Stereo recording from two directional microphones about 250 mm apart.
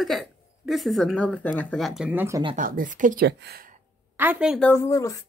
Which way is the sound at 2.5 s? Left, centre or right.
Right.